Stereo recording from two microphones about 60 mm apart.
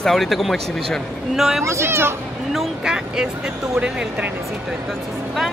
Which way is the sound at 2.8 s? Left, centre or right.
Centre.